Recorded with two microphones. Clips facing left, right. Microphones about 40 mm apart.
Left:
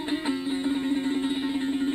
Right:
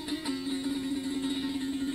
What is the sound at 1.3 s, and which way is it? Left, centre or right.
Music, left.